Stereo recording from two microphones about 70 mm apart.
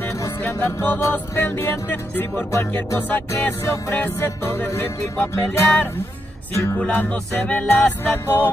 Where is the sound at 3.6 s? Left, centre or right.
Left.